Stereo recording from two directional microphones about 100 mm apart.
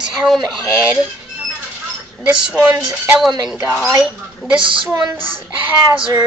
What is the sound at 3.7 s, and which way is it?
Speech, 20° right (ahead or behind).